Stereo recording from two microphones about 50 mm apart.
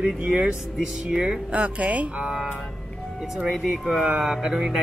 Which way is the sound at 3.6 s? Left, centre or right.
Centre.